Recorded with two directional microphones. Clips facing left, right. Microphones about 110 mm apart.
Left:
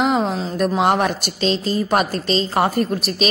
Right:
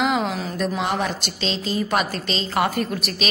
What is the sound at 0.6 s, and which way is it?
Speech, 55° left (ahead or behind).